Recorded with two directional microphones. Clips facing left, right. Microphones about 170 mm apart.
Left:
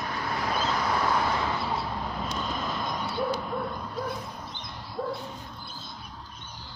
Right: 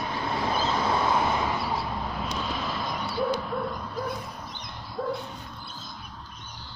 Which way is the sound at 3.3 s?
5° left (ahead or behind).